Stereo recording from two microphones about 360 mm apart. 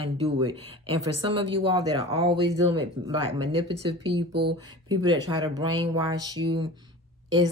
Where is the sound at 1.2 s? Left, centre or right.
Centre.